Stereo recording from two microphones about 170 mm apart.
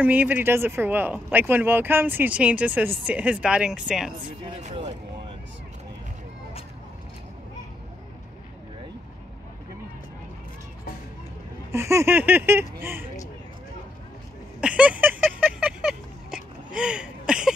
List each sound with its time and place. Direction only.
0.0 s speech: 10° right (ahead or behind)
11.7 s speech: 15° right (ahead or behind)
14.6 s a sound: 5° right (ahead or behind)